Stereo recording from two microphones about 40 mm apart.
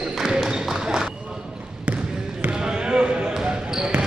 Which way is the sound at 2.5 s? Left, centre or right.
Right.